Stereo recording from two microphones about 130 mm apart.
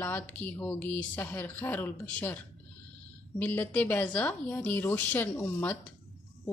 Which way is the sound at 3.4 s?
10° left (ahead or behind).